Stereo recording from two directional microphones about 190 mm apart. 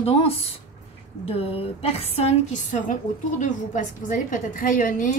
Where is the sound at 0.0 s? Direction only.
30° left (ahead or behind).